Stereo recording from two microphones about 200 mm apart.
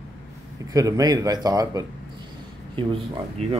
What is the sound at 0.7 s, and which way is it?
Speech, 15° right (ahead or behind).